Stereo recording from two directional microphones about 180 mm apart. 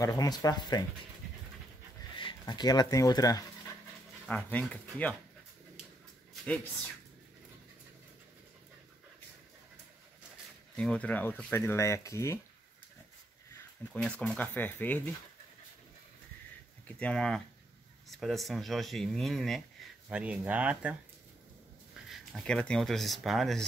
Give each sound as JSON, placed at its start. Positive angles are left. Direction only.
{"t": 0.0, "sound": "speech", "side_deg": 20}
{"t": 2.1, "sound": "speech", "side_deg": 25}
{"t": 4.3, "sound": "speech", "side_deg": 10}
{"t": 10.8, "sound": "speech", "side_deg": 5}
{"t": 13.9, "sound": "speech", "side_deg": 5}
{"t": 16.8, "sound": "speech", "side_deg": 5}
{"t": 22.1, "sound": "speech", "side_deg": 5}